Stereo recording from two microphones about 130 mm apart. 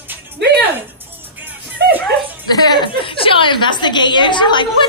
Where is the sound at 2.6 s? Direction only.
40° left (ahead or behind).